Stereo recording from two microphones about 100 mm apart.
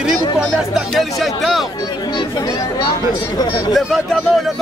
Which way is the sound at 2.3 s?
40° left (ahead or behind).